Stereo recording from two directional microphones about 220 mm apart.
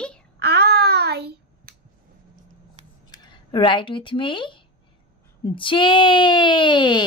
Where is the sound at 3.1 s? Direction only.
20° left (ahead or behind).